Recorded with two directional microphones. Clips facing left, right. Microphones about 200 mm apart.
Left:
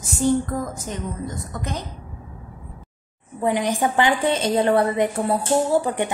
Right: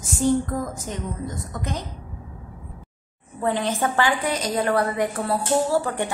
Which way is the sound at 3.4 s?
15° left (ahead or behind).